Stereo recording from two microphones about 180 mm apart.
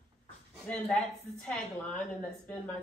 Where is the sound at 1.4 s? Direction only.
10° left (ahead or behind).